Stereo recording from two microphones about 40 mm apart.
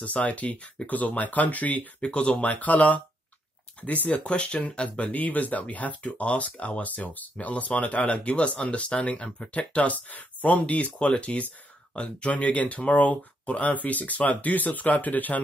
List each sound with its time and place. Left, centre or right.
0.0 s speech: left
2.0 s speech: left